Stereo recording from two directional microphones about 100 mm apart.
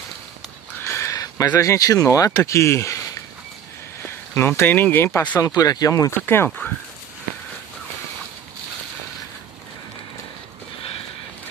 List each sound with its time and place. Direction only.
0.7 s a sound: 25° left (ahead or behind)
1.6 s speech: 35° left (ahead or behind)
5.4 s speech: 35° left (ahead or behind)
6.1 s speech: 20° left (ahead or behind)